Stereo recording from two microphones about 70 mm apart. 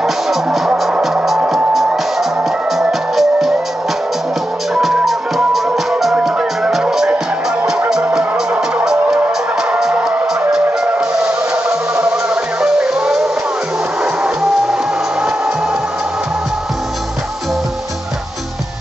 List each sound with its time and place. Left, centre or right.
0.0 s music: centre
4.7 s music: centre
11.0 s music: centre